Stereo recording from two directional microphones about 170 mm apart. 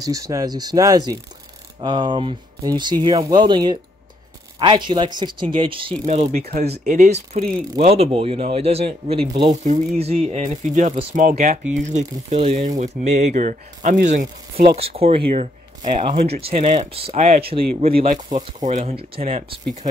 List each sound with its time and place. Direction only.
0.0 s speech: 20° right (ahead or behind)
6.9 s speech: 40° right (ahead or behind)
14.6 s speech: 30° right (ahead or behind)